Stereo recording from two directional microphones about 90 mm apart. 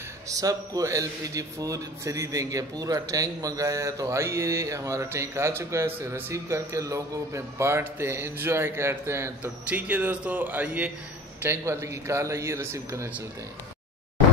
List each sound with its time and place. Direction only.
0.3 s a man's voice: 40° right (ahead or behind)
9.7 s speech: 15° right (ahead or behind)
11.4 s a man's voice: 30° right (ahead or behind)